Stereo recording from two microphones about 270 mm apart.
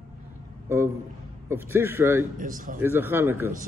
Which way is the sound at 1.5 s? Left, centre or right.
Centre.